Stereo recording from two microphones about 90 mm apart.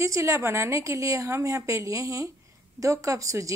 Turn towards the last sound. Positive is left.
turn(degrees=-35)  # may be behind; listen again after turning